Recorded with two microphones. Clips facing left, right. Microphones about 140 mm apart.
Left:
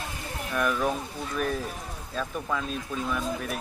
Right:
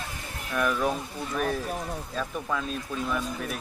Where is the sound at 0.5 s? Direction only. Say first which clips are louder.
Even; centre (ahead or behind).